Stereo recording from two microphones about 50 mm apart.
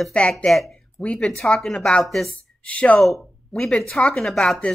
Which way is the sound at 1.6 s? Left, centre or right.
Centre.